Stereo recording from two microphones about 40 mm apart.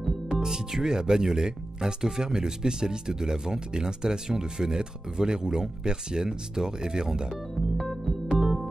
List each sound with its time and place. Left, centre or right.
0.3 s speech: centre
7.7 s music: centre